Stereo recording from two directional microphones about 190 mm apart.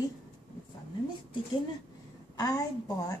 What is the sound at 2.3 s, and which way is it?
Speech, 20° left (ahead or behind).